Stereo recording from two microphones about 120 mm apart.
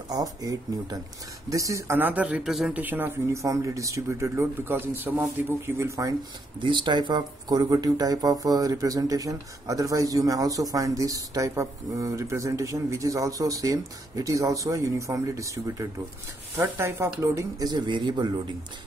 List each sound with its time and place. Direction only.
0.1 s speech: 30° right (ahead or behind); by 2.8 s 5° right (ahead or behind)
2.8 s speech: 15° right (ahead or behind)
3.4 s speech: 25° right (ahead or behind)
6.6 s speech: 40° right (ahead or behind); by 17.6 s 25° right (ahead or behind)
17.6 s speech: 40° right (ahead or behind)